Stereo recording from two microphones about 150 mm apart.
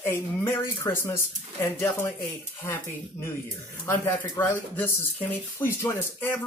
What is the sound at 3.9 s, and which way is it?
Speech, 15° left (ahead or behind).